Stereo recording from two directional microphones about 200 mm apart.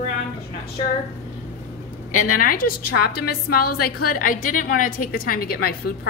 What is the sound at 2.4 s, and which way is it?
A woman's voice, 45° left (ahead or behind).